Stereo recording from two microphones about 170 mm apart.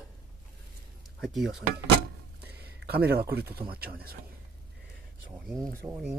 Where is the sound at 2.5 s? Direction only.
70° right (ahead or behind).